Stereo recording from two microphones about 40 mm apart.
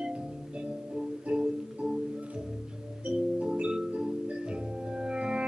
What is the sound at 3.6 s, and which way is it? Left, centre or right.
Organ, centre.